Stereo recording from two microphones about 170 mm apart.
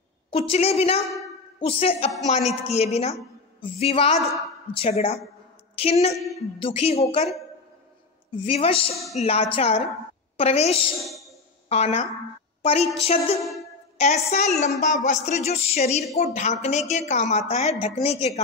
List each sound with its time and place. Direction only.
0.3 s a woman's voice: 35° left (ahead or behind)
8.5 s a woman's voice: 35° left (ahead or behind)
11.1 s a sound: centre (ahead or behind)
11.7 s a woman's voice: 40° left (ahead or behind)
13.4 s speech: centre (ahead or behind)
13.9 s a woman's voice: 40° left (ahead or behind)